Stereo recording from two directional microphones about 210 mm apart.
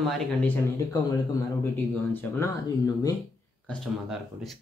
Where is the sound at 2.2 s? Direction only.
15° left (ahead or behind).